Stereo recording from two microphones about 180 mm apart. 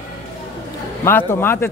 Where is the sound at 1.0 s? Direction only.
10° left (ahead or behind).